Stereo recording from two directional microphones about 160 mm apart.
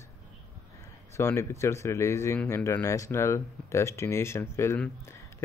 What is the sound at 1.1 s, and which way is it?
Speech, 15° left (ahead or behind).